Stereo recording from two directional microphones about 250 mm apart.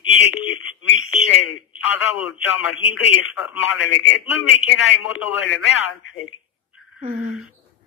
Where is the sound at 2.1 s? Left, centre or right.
Left.